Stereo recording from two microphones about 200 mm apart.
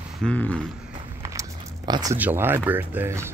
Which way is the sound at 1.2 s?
15° right (ahead or behind).